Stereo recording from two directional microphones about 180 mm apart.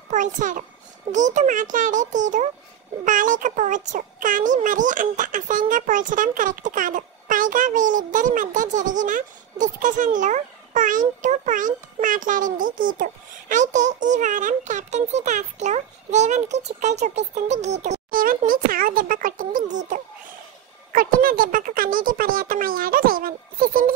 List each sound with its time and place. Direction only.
0.1 s a child's voice: 45° right (ahead or behind)